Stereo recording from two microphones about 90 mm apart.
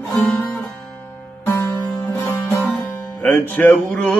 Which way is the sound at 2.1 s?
25° left (ahead or behind).